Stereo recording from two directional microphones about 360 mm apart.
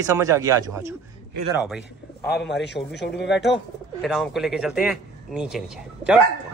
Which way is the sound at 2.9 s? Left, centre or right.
Left.